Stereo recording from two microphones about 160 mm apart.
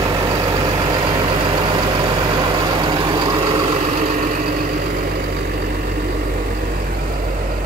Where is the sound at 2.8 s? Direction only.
30° right (ahead or behind).